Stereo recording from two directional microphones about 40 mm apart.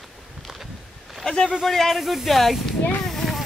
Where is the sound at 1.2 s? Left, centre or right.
Centre.